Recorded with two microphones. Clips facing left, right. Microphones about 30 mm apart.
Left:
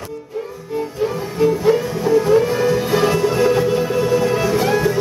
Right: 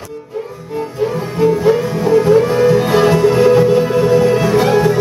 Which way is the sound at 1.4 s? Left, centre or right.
Centre.